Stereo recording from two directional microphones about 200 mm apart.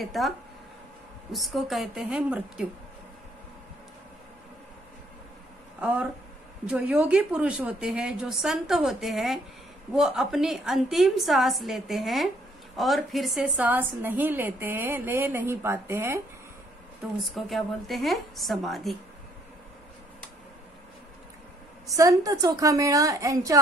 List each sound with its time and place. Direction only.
0.0 s a woman's voice: centre (ahead or behind)
1.3 s a woman's voice: centre (ahead or behind)
5.8 s a woman's voice: 5° right (ahead or behind)
17.2 s a woman's voice: centre (ahead or behind)
21.9 s a woman's voice: 15° right (ahead or behind)